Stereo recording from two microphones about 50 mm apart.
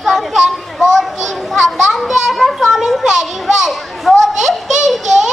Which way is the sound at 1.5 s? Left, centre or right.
Centre.